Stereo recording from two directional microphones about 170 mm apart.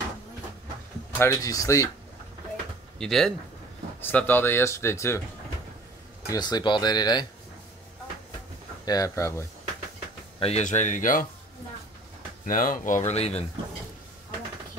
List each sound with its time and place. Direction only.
1.1 s speech: 15° left (ahead or behind)
3.0 s speech: 5° left (ahead or behind)
6.2 s speech: 20° left (ahead or behind)
8.8 s speech: 20° left (ahead or behind)
10.4 s speech: 40° left (ahead or behind)
12.4 s speech: 50° left (ahead or behind)